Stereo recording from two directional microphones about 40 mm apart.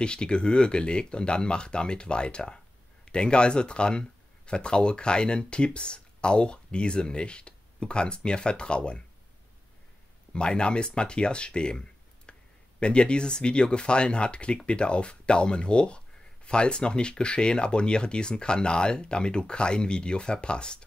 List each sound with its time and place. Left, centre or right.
0.0 s speech: left
10.3 s speech: left